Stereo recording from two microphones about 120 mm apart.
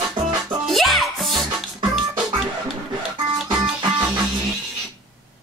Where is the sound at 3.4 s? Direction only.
Centre (ahead or behind).